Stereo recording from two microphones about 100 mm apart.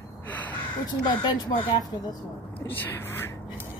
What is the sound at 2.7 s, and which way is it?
Speech, 20° left (ahead or behind).